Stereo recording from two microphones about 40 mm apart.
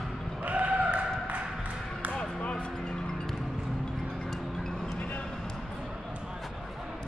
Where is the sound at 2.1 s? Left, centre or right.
Left.